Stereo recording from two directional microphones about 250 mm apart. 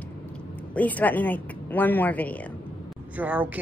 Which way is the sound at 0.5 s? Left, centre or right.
Centre.